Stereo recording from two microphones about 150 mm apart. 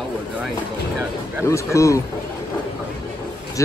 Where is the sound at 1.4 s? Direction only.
20° left (ahead or behind).